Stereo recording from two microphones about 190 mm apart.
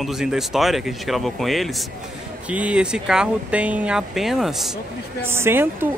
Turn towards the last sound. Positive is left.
turn(degrees=-10)  # may be behind; listen again after turning